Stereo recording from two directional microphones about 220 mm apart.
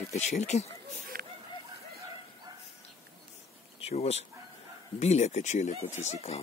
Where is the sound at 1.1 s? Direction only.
40° right (ahead or behind).